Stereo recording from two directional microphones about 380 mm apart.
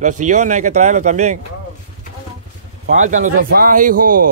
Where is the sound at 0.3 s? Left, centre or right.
Centre.